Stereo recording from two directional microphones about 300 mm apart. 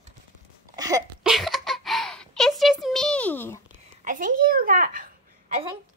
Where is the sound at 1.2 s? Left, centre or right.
Centre.